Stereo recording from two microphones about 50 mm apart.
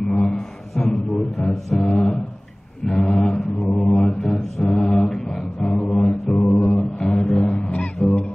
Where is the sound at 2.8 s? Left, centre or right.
Centre.